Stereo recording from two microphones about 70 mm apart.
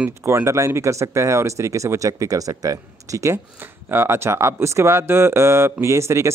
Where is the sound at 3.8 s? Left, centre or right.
Right.